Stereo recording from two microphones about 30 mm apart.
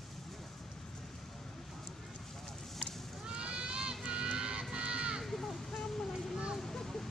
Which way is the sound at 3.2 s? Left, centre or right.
Right.